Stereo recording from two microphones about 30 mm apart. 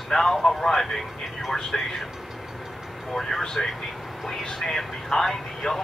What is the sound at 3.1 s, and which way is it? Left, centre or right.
Speech, centre.